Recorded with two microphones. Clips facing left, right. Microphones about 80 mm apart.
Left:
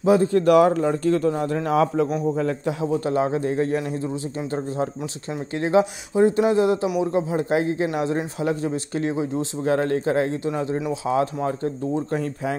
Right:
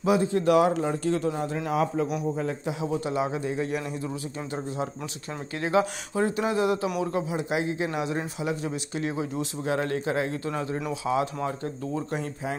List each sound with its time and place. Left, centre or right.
0.0 s speech: left
0.3 s a man's voice: left
2.3 s a man's voice: left
3.0 s speech: left
5.6 s speech: left
7.3 s speech: left
9.1 s speech: left
9.7 s speech: left